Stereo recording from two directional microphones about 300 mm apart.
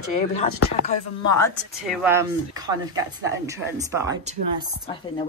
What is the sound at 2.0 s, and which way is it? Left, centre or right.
Speech, centre.